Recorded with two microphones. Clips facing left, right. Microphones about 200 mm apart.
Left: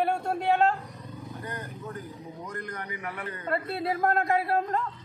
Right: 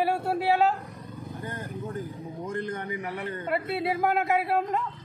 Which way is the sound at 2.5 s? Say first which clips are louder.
Right 7 dB; 25° right (ahead or behind).